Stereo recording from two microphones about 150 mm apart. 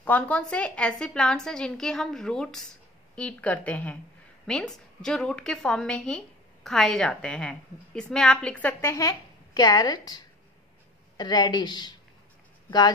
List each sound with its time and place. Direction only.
0.0 s a woman's voice: 10° left (ahead or behind)
8.9 s a child's voice: 25° left (ahead or behind)